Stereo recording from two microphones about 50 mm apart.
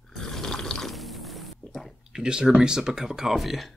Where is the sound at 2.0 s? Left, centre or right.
Centre.